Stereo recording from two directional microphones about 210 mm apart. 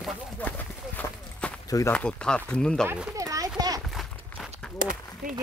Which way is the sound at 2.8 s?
10° right (ahead or behind).